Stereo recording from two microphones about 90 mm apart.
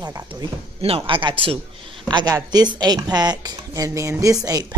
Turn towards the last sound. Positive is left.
turn(degrees=-40)  # may be behind; listen again after turning